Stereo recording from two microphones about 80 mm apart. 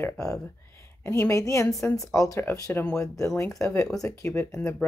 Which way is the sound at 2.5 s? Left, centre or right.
Left.